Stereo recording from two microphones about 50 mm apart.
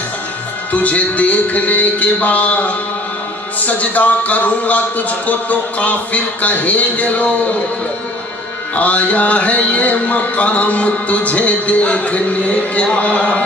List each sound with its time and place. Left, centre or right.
0.7 s music: left
8.7 s music: left